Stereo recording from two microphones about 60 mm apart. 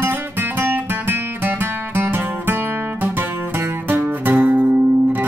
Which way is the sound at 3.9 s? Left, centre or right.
Right.